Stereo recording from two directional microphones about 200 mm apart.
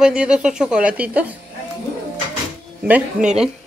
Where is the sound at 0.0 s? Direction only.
5° right (ahead or behind).